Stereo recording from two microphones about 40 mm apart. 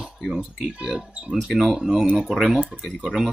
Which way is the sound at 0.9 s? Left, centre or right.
Right.